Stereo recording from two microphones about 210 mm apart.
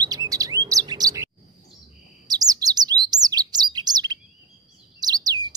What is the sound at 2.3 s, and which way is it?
Bird, 20° right (ahead or behind).